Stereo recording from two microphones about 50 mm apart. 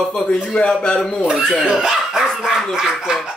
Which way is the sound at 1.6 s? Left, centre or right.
Centre.